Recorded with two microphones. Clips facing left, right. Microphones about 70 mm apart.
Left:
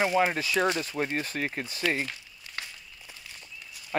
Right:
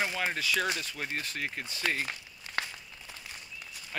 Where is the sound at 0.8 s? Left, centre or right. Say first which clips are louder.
Left 6 dB; left.